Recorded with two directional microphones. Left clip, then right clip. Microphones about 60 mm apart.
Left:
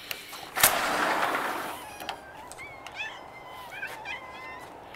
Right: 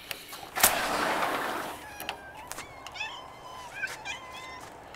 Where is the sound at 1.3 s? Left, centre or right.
Right.